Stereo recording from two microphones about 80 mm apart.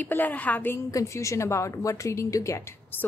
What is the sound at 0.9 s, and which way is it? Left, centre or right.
A woman's voice, left.